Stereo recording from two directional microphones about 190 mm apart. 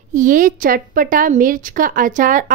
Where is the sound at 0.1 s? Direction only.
45° right (ahead or behind).